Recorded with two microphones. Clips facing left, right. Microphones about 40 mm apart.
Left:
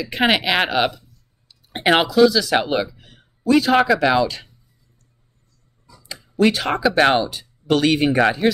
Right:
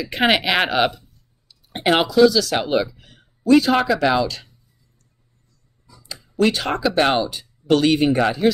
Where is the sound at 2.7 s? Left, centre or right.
Centre.